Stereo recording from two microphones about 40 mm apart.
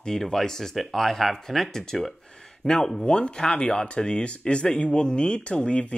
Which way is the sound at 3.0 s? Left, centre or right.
Left.